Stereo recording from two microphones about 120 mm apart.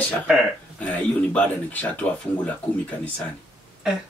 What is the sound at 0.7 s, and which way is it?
Speech, 10° left (ahead or behind).